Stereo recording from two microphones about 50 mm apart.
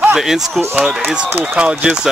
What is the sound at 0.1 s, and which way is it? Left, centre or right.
Speech, centre.